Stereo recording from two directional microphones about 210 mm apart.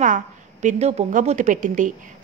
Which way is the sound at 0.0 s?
35° right (ahead or behind).